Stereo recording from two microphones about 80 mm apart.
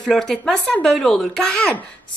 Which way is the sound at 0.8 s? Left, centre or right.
Centre.